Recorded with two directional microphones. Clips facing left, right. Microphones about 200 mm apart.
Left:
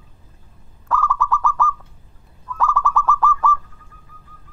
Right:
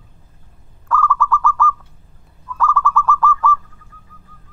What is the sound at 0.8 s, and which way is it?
Bird, 15° left (ahead or behind).